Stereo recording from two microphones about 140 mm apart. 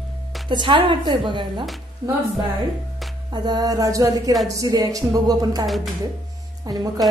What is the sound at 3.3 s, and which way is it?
Speech, 30° right (ahead or behind).